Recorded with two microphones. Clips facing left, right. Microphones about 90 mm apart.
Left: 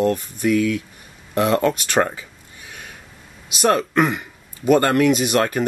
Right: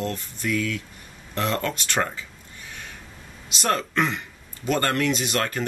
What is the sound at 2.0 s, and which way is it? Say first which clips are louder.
Speech: left 6 dB; 30° left (ahead or behind).